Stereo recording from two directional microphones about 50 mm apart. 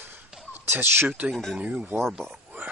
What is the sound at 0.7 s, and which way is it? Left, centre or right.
Speech, right.